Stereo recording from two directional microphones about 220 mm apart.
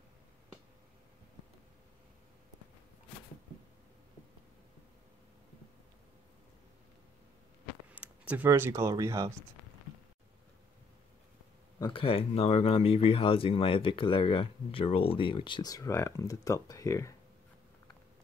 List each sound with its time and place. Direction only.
7.9 s speech: 5° right (ahead or behind)
11.8 s speech: 25° left (ahead or behind)